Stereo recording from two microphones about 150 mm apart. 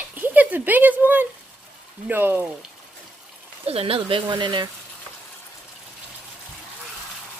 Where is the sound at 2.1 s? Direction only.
15° right (ahead or behind).